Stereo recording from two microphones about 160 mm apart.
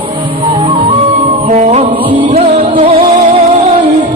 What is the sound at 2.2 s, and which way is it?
Music, 40° right (ahead or behind).